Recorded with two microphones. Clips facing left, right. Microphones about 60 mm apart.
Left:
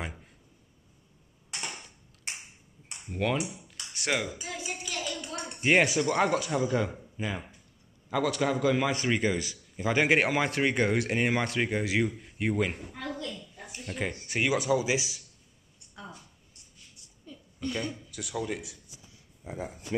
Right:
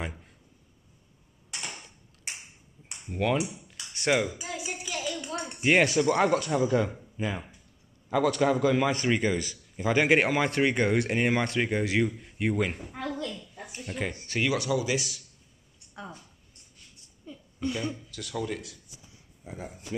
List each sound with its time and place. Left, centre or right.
0.0 s a man's voice: centre
3.1 s a man's voice: centre
3.4 s music: centre
5.6 s a man's voice: centre
13.8 s a man's voice: centre
14.2 s speech: centre
17.3 s a sound: centre
18.1 s speech: centre
19.4 s speech: left